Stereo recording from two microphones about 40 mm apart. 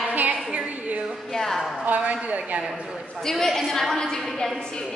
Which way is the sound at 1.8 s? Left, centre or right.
Right.